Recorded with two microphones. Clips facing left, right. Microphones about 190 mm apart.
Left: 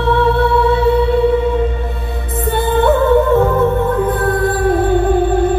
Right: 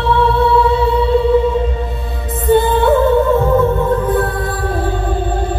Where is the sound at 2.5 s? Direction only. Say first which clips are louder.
Right 3 dB; 55° left (ahead or behind).